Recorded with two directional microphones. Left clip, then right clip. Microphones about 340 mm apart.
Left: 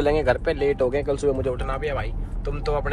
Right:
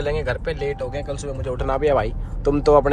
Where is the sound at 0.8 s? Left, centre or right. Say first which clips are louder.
Left 6 dB; centre.